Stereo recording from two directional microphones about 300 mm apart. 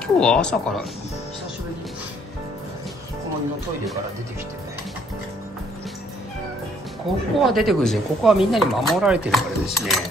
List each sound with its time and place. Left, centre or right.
0.0 s speech: centre
7.3 s speech: centre